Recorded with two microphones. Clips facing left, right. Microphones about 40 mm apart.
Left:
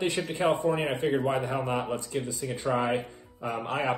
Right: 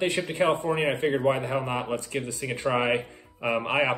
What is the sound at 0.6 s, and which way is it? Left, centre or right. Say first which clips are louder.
Speech: right 2 dB; right.